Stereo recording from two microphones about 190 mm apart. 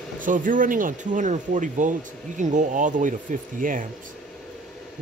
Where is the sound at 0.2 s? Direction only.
45° right (ahead or behind).